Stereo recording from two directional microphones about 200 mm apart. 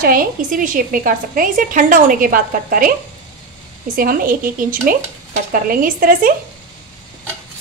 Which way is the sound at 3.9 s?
45° right (ahead or behind).